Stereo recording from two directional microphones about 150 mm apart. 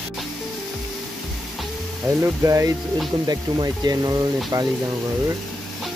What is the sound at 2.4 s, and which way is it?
Speech, 20° right (ahead or behind).